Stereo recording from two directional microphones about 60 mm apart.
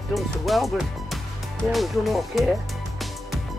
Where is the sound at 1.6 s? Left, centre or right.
Centre.